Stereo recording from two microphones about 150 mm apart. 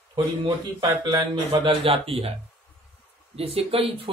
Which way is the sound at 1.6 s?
35° right (ahead or behind).